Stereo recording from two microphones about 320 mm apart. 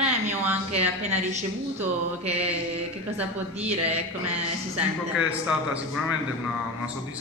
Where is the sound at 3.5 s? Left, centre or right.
Centre.